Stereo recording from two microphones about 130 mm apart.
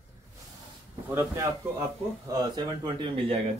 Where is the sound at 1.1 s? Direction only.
20° right (ahead or behind).